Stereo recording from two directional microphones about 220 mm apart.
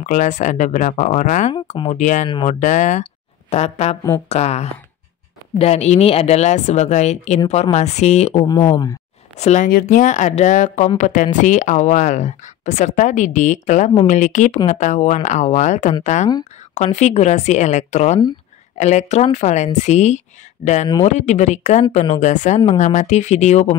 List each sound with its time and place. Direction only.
0.0 s speech: 35° left (ahead or behind)
9.4 s speech: 35° left (ahead or behind)